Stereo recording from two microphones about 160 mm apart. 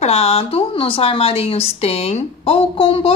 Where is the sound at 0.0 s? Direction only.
40° left (ahead or behind).